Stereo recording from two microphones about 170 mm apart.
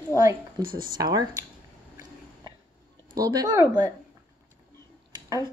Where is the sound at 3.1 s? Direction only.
20° right (ahead or behind).